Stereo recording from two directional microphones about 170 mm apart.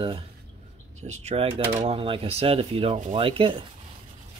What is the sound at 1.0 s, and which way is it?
Speech, 40° right (ahead or behind).